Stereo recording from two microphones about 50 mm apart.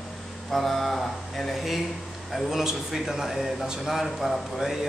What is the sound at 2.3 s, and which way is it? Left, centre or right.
Speech, centre.